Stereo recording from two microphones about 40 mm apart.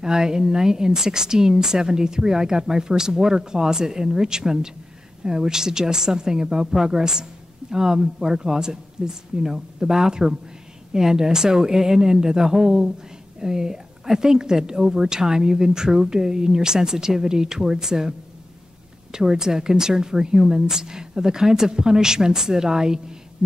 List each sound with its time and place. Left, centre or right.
0.0 s a woman's voice: centre
19.1 s a woman's voice: centre